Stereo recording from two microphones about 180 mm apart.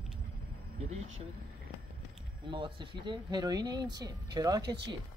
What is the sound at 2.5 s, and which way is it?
Speech, 25° right (ahead or behind).